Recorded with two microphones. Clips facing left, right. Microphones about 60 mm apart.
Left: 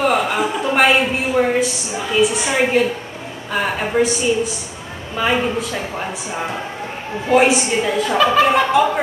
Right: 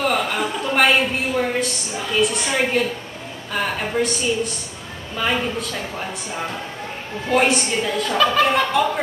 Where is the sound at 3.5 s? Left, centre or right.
Centre.